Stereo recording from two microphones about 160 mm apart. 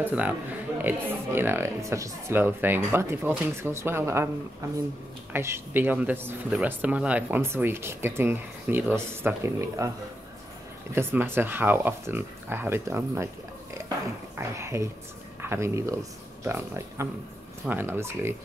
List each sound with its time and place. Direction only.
0.0 s speech: 10° right (ahead or behind)
5.3 s speech: 15° right (ahead or behind)
11.0 s speech: 15° right (ahead or behind)
14.6 s speech: 20° right (ahead or behind)